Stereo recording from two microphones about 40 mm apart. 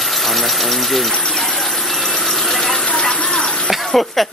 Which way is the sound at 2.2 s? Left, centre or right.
Centre.